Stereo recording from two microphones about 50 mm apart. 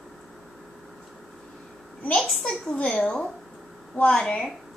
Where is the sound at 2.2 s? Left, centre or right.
Centre.